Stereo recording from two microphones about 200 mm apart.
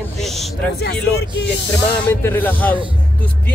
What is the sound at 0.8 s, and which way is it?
Speech, 55° left (ahead or behind).